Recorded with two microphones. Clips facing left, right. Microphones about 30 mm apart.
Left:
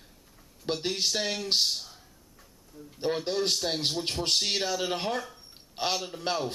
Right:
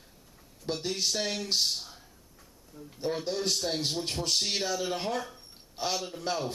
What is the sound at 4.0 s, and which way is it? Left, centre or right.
Speech, left.